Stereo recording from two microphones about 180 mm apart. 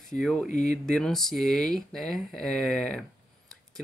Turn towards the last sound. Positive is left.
turn(degrees=5)  # may be behind; listen again after turning